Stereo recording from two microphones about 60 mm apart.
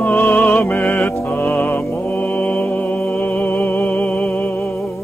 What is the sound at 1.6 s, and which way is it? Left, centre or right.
Mantra, left.